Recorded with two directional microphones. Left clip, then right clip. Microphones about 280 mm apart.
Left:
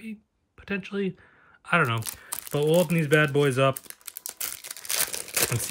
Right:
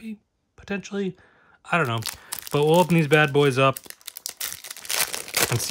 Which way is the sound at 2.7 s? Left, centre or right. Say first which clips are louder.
Right 3 dB; centre.